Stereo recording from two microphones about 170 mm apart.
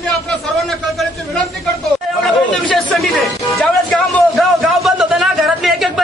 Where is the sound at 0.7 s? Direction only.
Centre (ahead or behind).